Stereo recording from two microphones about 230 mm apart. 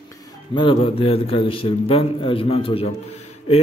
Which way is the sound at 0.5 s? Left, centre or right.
Left.